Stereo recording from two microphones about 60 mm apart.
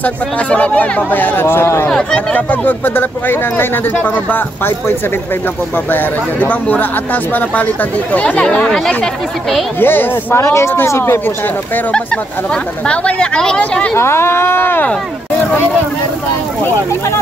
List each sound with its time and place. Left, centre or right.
0.0 s speech: left
1.9 s speech: centre
2.3 s speech: left
5.9 s speech: left
8.5 s speech: centre
9.8 s speech: left
10.4 s speech: left
12.8 s speech: centre
13.9 s speech: left